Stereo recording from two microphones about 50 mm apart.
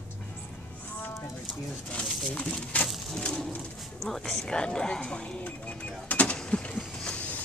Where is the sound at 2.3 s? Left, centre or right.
Left.